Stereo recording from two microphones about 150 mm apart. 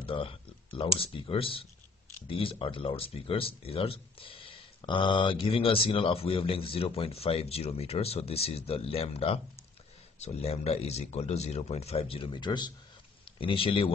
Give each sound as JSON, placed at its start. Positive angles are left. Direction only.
{"t": 0.0, "sound": "speech", "side_deg": 35}